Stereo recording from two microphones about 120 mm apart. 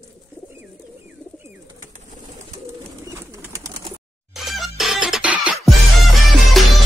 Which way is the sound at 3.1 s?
25° right (ahead or behind).